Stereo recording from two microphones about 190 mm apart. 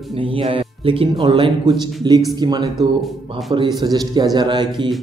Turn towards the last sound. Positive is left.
turn(degrees=-25)  # may be behind; listen again after turning